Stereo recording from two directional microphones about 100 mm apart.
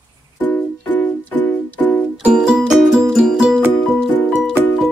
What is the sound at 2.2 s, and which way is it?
Music, 10° right (ahead or behind).